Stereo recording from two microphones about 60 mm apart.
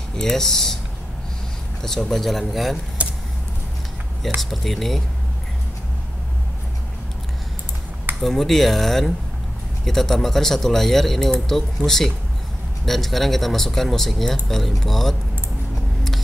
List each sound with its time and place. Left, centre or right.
0.2 s speech: centre
1.8 s speech: centre
3.0 s a sound: right
4.4 s speech: centre
8.2 s speech: centre